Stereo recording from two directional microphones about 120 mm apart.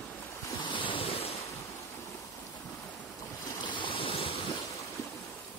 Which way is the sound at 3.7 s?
45° left (ahead or behind).